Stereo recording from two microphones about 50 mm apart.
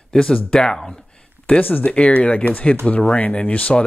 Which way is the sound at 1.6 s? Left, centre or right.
Left.